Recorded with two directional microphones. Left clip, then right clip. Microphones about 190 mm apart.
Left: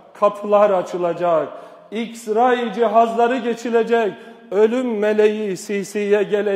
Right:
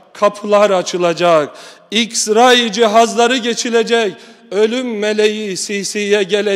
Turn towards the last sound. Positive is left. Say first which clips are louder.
# right 4 dB
turn(degrees=-15)  # may be behind; listen again after turning